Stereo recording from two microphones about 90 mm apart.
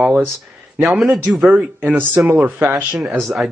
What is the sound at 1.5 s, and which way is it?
Speech, 20° right (ahead or behind).